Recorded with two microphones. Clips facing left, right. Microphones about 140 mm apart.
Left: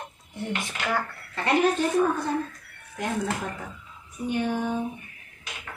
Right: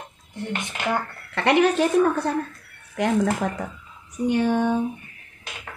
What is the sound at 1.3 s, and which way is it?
A woman's voice, 75° right (ahead or behind).